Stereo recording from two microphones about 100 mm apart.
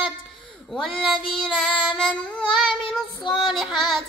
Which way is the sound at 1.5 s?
10° left (ahead or behind).